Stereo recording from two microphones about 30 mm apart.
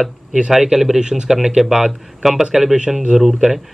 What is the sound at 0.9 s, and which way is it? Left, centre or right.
Speech, right.